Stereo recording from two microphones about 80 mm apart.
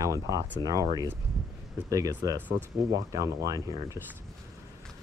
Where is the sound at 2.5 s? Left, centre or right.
Right.